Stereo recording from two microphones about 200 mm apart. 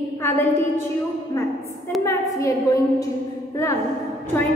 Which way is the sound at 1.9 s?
Centre (ahead or behind).